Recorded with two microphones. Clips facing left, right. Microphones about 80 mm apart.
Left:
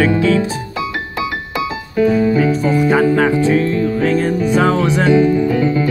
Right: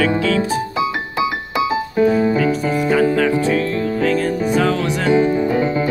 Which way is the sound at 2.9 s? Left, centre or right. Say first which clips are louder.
Left 1 dB; left.